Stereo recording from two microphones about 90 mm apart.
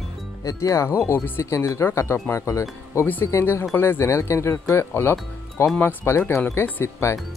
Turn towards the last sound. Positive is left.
turn(degrees=30)  # may be behind; listen again after turning